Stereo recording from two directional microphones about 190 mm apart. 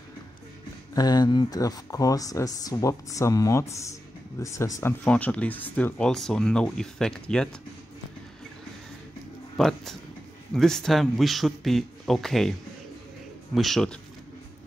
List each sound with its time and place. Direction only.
0.9 s speech: 20° left (ahead or behind); by 7.4 s 5° left (ahead or behind)
9.6 s speech: centre (ahead or behind)
13.6 s speech: centre (ahead or behind)